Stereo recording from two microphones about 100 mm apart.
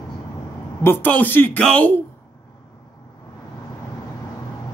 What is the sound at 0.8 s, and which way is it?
Speech, 20° left (ahead or behind).